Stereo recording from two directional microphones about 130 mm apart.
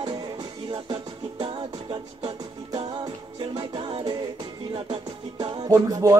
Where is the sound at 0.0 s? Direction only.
30° right (ahead or behind).